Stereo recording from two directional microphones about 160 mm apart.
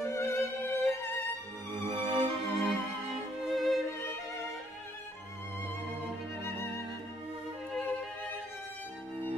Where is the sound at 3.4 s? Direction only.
Centre (ahead or behind).